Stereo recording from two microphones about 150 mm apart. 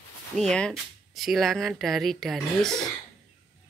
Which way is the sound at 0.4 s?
5° left (ahead or behind).